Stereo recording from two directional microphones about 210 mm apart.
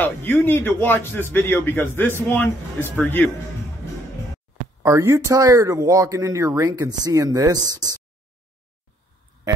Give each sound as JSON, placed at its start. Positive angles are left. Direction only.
{"t": 0.0, "sound": "a man's voice", "side_deg": 10}
{"t": 4.8, "sound": "speech", "side_deg": -15}